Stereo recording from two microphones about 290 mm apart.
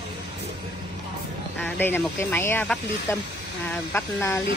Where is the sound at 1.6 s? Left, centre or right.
Centre.